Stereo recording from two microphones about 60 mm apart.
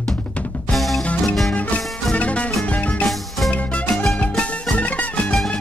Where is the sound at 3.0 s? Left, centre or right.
Centre.